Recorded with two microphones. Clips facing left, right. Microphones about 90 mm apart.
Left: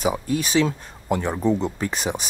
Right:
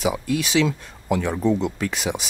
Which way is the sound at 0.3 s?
40° left (ahead or behind).